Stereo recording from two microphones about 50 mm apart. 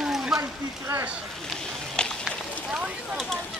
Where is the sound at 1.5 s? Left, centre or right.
Centre.